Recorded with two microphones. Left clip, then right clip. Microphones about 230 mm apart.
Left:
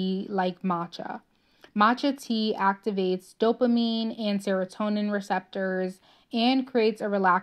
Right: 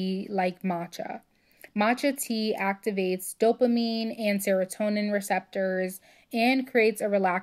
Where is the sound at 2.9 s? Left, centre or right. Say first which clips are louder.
Left 1 dB; centre.